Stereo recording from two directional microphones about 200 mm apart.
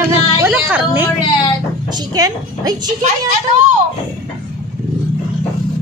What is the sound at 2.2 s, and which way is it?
Speech, 20° right (ahead or behind).